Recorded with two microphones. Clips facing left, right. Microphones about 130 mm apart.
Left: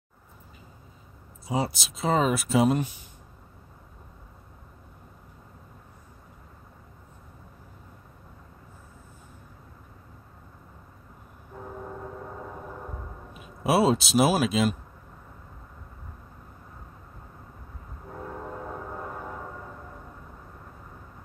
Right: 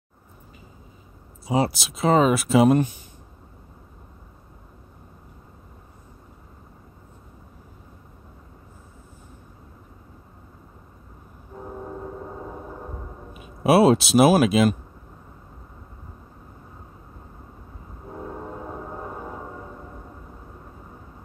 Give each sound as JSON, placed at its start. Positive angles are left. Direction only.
{"t": 1.5, "sound": "speech", "side_deg": -75}
{"t": 12.4, "sound": "gong", "side_deg": -15}
{"t": 13.7, "sound": "speech", "side_deg": -65}
{"t": 18.1, "sound": "train", "side_deg": -15}